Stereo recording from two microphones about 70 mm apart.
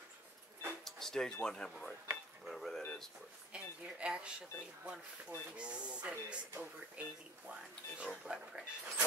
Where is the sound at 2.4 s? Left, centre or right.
Centre.